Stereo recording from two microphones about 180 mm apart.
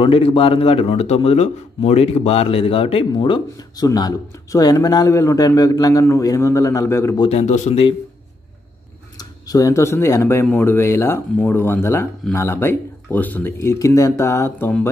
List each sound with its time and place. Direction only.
0.0 s speech: 30° left (ahead or behind)
7.2 s a man's voice: 35° left (ahead or behind)
9.1 s speech: 20° left (ahead or behind)